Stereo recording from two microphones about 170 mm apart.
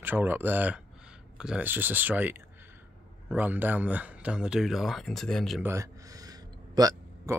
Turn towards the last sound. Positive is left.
turn(degrees=-20)  # may be behind; listen again after turning